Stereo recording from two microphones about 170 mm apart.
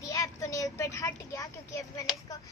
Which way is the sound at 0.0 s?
20° left (ahead or behind).